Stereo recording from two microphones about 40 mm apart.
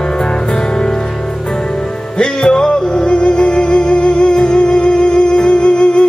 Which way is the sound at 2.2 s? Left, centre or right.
Centre.